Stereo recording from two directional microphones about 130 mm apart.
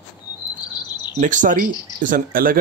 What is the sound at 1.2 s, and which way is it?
Speech, 75° right (ahead or behind).